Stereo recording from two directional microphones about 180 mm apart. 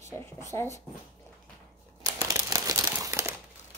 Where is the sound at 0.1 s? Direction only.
15° left (ahead or behind).